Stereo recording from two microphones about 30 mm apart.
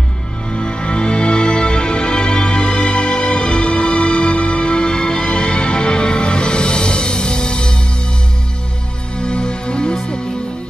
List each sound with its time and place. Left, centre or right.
0.5 s music: left
9.2 s music: left